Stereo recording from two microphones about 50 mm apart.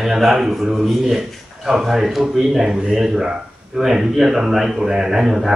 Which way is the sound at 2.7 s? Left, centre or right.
Centre.